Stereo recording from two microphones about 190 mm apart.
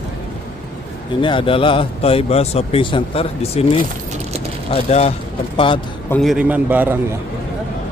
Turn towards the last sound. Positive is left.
turn(degrees=-10)  # may be behind; listen again after turning